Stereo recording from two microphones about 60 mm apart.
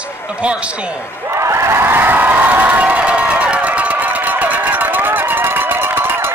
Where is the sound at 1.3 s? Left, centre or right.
Right.